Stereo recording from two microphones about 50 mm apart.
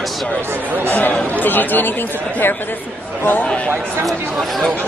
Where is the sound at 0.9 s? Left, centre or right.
Left.